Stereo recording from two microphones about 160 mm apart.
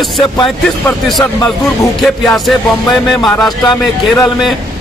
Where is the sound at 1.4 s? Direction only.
Centre (ahead or behind).